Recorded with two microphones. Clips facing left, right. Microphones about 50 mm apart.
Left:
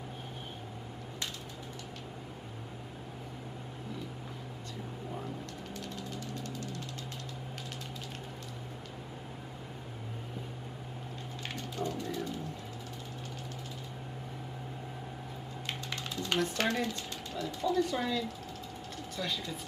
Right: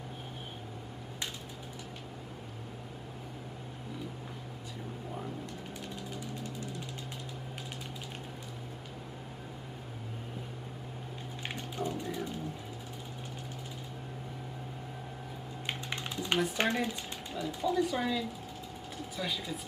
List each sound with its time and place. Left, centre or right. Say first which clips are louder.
5.8 s music: left 1 dB; centre
11.4 s music: even; centre
15.6 s typing: right 2 dB; right
16.5 s speech: right 1 dB; centre